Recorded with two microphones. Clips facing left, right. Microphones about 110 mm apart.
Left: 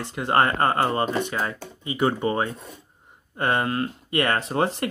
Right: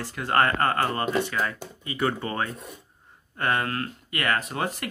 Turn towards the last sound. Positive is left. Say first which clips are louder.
# left 6 dB
turn(degrees=30)  # may be behind; listen again after turning